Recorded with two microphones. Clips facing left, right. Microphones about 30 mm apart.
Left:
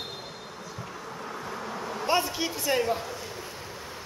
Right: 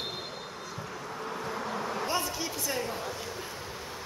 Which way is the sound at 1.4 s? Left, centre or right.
Centre.